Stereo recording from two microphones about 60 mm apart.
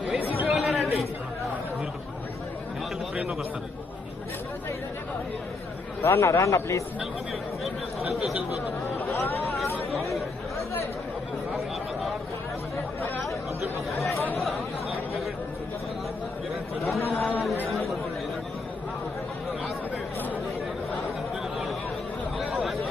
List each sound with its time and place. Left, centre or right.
0.4 s chatter: right
6.0 s a man's voice: left
7.6 s chatter: centre
17.2 s chatter: centre
22.4 s a sound: centre